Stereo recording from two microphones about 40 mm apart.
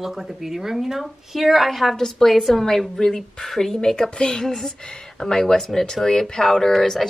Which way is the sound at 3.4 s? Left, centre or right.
Centre.